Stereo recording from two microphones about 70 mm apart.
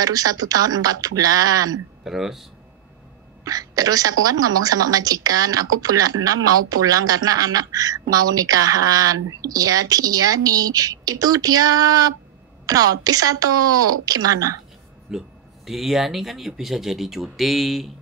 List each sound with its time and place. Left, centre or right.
0.0 s a woman's voice: right
2.0 s speech: centre
3.4 s a woman's voice: right
15.0 s speech: centre